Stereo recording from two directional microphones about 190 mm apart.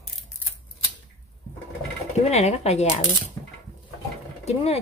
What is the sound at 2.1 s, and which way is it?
Speech, 35° left (ahead or behind).